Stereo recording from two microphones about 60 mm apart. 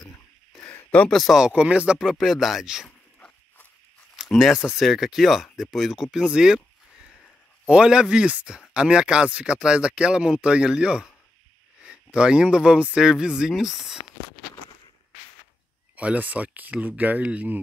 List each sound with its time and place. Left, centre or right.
1.3 s speech: centre
4.7 s speech: centre
6.1 s a sound: centre
7.6 s speech: centre
16.0 s speech: right